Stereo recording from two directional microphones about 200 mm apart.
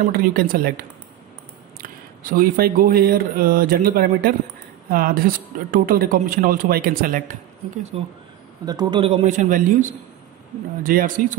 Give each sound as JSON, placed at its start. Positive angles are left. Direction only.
{"t": 0.0, "sound": "speech", "side_deg": -45}
{"t": 2.3, "sound": "speech", "side_deg": -45}
{"t": 8.6, "sound": "a man's voice", "side_deg": -20}
{"t": 9.0, "sound": "a man's voice", "side_deg": -35}